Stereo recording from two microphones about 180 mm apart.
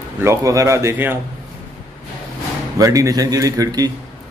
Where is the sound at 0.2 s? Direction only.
15° right (ahead or behind).